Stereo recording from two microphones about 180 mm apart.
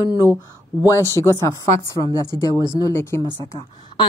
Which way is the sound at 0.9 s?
15° left (ahead or behind).